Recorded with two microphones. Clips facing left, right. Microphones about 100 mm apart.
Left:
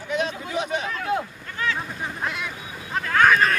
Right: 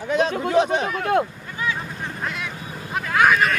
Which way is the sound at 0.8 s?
60° right (ahead or behind).